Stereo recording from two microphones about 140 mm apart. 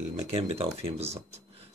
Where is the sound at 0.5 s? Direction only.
45° right (ahead or behind).